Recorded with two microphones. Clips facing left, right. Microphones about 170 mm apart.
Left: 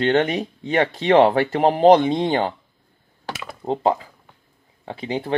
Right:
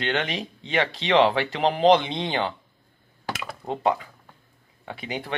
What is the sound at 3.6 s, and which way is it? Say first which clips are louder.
Speech: left 4 dB; 30° left (ahead or behind).